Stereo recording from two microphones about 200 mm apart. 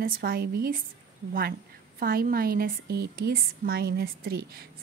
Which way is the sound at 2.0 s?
45° right (ahead or behind).